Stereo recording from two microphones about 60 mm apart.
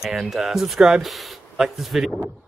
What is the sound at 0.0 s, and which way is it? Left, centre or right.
Speech, centre.